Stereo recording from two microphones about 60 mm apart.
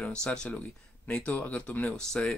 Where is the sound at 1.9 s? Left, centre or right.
Centre.